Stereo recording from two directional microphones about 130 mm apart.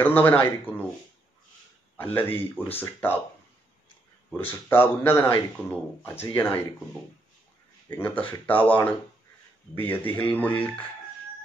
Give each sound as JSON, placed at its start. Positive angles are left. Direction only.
{"t": 0.0, "sound": "speech", "side_deg": 15}
{"t": 2.0, "sound": "speech", "side_deg": 15}
{"t": 4.4, "sound": "speech", "side_deg": 15}
{"t": 7.9, "sound": "speech", "side_deg": 15}